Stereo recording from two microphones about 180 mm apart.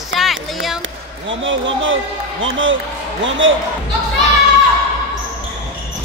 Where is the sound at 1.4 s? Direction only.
90° right.